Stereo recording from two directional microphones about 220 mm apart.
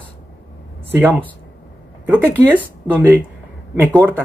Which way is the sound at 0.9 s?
10° right (ahead or behind).